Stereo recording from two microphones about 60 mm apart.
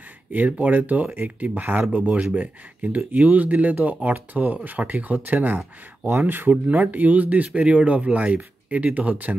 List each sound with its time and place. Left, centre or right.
0.3 s speech: right